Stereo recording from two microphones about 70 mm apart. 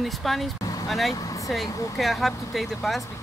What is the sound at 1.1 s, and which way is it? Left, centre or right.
Vehicle, left.